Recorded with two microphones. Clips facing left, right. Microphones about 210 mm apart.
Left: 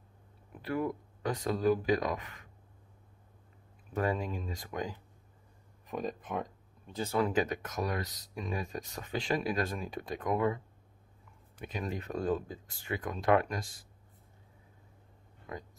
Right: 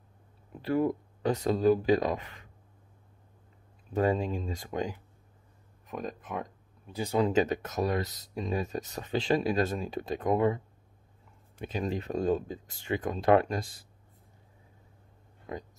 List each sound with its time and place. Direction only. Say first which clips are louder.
0.6 s speech: right 6 dB; 30° right (ahead or behind)
3.9 s speech: right 5 dB; 25° right (ahead or behind)
5.9 s speech: left 1 dB; centre (ahead or behind)
7.0 s speech: right 4 dB; 20° right (ahead or behind)
11.6 s speech: right 5 dB; 25° right (ahead or behind)
15.5 s speech: right 4 dB; 25° right (ahead or behind)